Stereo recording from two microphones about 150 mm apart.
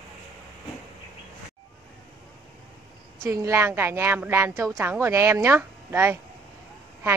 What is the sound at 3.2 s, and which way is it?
A woman's voice, 20° right (ahead or behind).